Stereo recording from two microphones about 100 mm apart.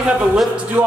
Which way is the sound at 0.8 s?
15° right (ahead or behind).